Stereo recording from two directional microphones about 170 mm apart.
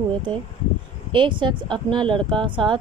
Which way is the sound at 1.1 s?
30° right (ahead or behind).